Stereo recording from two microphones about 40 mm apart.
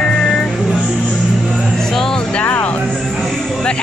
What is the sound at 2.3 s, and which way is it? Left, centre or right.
Music, left.